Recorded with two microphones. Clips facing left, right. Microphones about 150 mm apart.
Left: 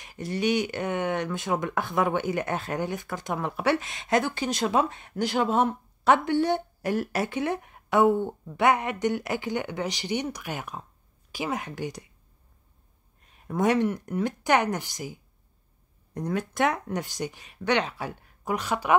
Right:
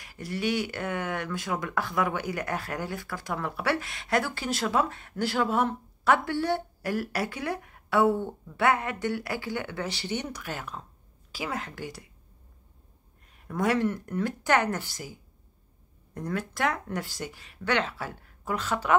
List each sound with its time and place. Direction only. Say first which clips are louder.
0.0 s speech: left 3 dB; 20° left (ahead or behind)
13.3 s speech: left 3 dB; 20° left (ahead or behind)